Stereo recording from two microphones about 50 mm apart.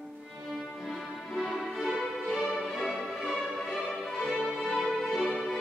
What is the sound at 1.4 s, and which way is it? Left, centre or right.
Music, centre.